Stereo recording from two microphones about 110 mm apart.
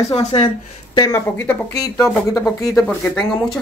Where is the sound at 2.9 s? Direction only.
10° left (ahead or behind).